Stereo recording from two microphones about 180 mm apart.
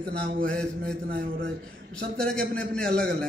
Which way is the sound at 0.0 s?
55° right (ahead or behind).